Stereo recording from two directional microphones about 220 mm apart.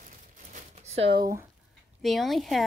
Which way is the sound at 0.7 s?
30° right (ahead or behind).